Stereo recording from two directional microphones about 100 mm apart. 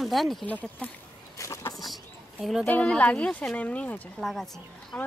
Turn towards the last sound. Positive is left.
turn(degrees=5)  # may be behind; listen again after turning